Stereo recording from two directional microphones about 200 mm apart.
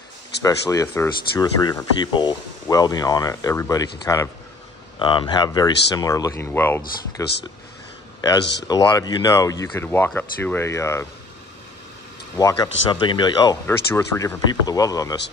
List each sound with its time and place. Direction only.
0.4 s speech: 15° left (ahead or behind)
8.6 s speech: 20° left (ahead or behind)
12.4 s speech: 15° left (ahead or behind)